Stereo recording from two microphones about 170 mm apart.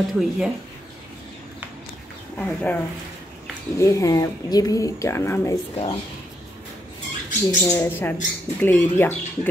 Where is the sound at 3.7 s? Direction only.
20° left (ahead or behind).